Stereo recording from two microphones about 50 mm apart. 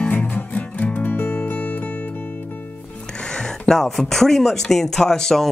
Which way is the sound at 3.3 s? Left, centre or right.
Centre.